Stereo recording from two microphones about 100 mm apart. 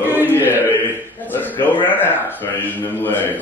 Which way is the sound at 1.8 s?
20° left (ahead or behind).